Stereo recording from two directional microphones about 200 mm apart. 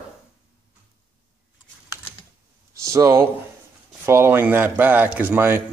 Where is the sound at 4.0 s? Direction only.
10° right (ahead or behind).